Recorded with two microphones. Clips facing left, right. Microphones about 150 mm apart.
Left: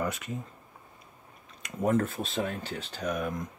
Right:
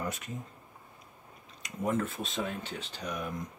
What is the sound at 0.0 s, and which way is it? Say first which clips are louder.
Speech: left 5 dB; 85° left.